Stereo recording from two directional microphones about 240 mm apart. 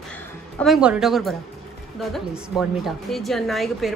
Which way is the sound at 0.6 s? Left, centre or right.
Centre.